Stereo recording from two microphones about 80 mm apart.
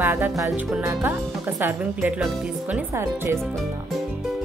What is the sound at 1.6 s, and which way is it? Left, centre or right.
Speech, right.